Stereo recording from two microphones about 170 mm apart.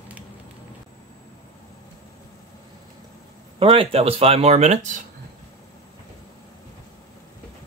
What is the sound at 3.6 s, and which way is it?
Speech, 35° right (ahead or behind).